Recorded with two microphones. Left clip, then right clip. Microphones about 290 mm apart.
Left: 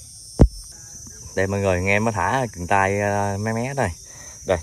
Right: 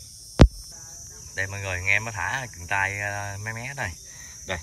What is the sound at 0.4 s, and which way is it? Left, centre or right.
Hum, left.